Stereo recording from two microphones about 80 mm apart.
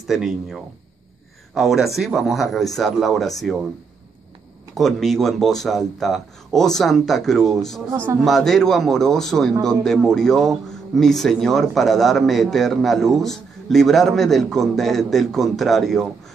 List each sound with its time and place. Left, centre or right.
0.0 s speech: centre
4.7 s speech: centre
7.9 s a man's voice: right
8.2 s speech: centre